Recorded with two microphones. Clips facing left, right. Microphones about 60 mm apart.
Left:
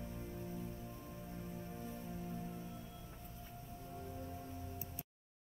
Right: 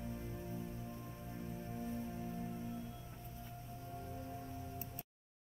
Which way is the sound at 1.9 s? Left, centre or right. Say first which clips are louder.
Right 3 dB; centre.